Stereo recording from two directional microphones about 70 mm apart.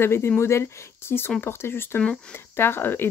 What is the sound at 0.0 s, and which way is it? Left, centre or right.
Speech, left.